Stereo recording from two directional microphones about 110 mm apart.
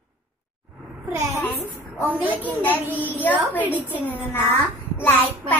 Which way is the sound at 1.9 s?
15° right (ahead or behind).